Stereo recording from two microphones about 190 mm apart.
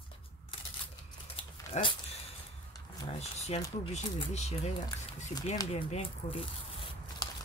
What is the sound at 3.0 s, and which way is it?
Speech, 35° left (ahead or behind).